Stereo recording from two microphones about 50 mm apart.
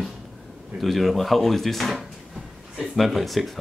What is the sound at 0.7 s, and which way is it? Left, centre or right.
Speech, centre.